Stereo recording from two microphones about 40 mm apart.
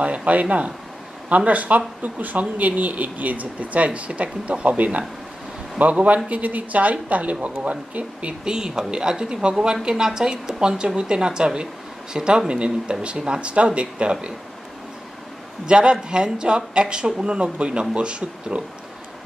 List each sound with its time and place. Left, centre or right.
0.0 s speech: right
8.5 s speech: centre
15.6 s speech: right